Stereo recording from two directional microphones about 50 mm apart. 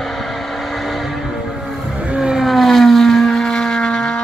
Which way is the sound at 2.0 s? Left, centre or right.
Centre.